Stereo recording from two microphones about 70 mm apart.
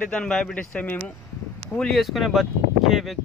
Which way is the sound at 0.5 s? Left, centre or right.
Left.